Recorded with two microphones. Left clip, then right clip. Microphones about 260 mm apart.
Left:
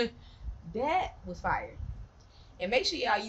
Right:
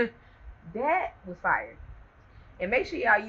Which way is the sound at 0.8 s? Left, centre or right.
Left.